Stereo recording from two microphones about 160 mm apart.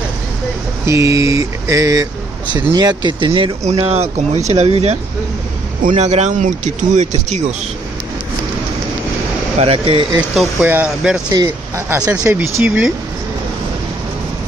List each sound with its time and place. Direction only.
0.8 s speech: 20° right (ahead or behind); by 7.4 s 45° right (ahead or behind)
9.6 s speech: 35° right (ahead or behind)
10.3 s speech: 10° right (ahead or behind)